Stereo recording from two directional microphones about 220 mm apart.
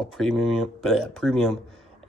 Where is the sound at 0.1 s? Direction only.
Centre (ahead or behind).